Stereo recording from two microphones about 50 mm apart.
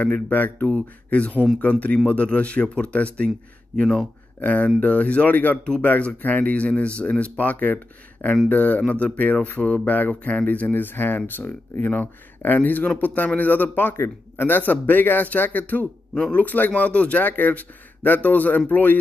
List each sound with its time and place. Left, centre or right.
0.1 s speech: left
0.7 s speech: left
4.4 s speech: left
14.3 s a sound: left
14.7 s speech: left